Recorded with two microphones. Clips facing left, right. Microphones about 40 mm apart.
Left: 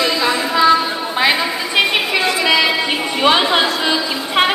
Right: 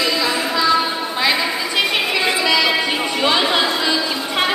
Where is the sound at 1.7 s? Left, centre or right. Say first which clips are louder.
Left 5 dB; centre.